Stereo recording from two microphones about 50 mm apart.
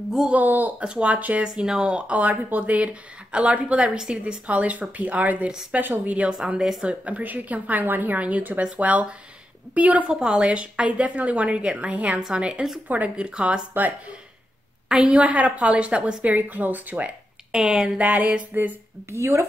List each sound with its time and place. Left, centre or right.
0.3 s speech: right
0.8 s speech: right
4.5 s speech: right
6.4 s speech: centre
10.0 s speech: centre
13.1 s speech: centre
15.0 s speech: right
16.3 s speech: right
17.5 s speech: centre
18.5 s speech: right
19.0 s speech: right